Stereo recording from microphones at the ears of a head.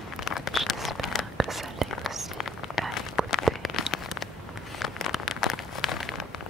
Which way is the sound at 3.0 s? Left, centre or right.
Left.